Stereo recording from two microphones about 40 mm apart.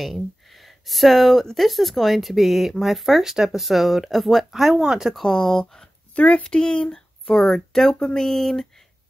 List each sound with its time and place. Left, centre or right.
0.0 s speech: centre
5.2 s speech: centre
6.2 s speech: left; by 8.8 s centre